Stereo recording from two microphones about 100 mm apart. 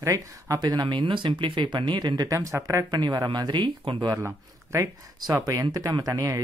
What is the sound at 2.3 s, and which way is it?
Speech, 30° right (ahead or behind).